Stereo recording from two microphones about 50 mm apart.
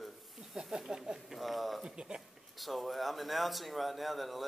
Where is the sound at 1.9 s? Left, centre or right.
Centre.